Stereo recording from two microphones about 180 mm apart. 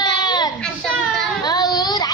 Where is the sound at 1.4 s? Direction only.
20° left (ahead or behind).